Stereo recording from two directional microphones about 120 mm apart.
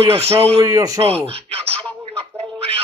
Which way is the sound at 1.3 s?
55° right (ahead or behind).